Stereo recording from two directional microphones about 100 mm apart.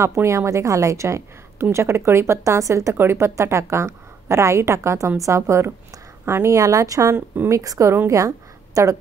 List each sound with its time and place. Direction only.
0.0 s a woman's voice: 30° right (ahead or behind)